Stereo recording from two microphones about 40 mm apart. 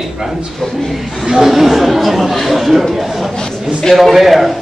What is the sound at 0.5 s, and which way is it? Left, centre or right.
Speech, centre.